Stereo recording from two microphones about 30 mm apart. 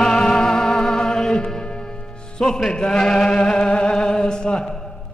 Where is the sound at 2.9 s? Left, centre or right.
Left.